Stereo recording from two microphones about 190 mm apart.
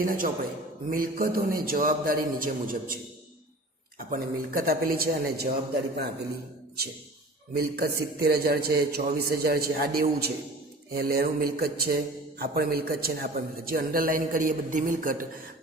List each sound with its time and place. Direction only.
0.0 s a man's voice: 45° right (ahead or behind)
4.1 s a man's voice: 50° right (ahead or behind)
7.5 s a man's voice: 55° right (ahead or behind)